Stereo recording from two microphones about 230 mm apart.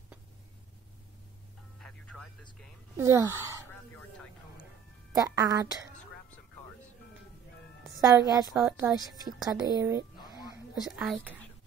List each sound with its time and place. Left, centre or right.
1.8 s telephone: centre
3.0 s speech: centre
5.1 s speech: centre
8.0 s speech: centre
8.5 s a woman's voice: centre
9.4 s speech: centre
10.3 s a sound: centre
10.8 s a woman's voice: centre